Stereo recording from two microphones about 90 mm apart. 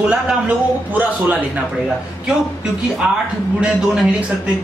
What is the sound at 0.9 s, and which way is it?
Speech, 20° right (ahead or behind).